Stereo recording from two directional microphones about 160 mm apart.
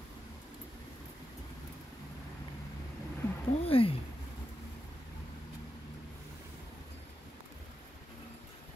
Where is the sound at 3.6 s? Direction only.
35° left (ahead or behind).